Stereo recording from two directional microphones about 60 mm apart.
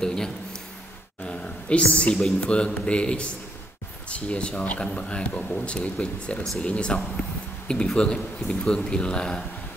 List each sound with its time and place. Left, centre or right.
0.0 s a sound: centre
2.4 s speech: centre
6.4 s a man's voice: centre
6.7 s a man's voice: centre